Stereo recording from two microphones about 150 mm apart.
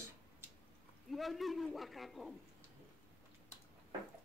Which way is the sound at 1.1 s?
Centre (ahead or behind).